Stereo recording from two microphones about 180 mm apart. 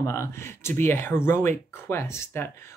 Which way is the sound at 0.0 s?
15° left (ahead or behind).